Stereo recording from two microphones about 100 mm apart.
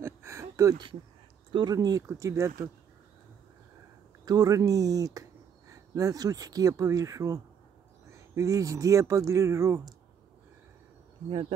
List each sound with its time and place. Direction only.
0.0 s a sound: 25° right (ahead or behind)
1.5 s speech: 45° right (ahead or behind)
4.2 s speech: 35° right (ahead or behind)
8.4 s speech: 35° right (ahead or behind)